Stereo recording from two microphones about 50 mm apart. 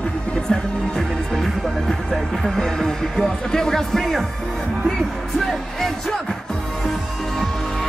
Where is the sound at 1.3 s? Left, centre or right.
Centre.